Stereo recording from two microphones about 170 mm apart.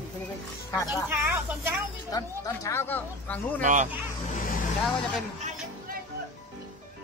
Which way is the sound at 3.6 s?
50° right (ahead or behind).